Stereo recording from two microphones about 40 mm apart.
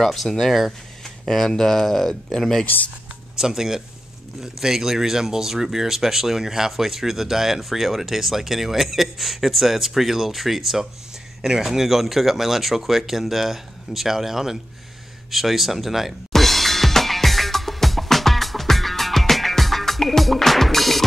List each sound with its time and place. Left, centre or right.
0.0 s speech: centre
1.2 s speech: centre
2.6 s speech: left
3.3 s speech: centre
16.3 s music: centre